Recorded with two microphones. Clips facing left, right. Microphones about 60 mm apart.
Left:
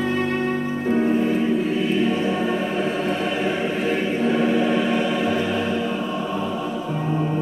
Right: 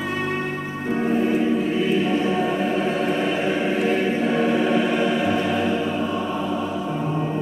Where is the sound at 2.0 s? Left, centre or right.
Centre.